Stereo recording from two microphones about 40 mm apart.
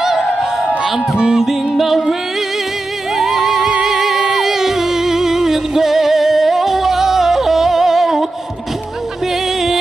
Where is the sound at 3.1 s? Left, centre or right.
Centre.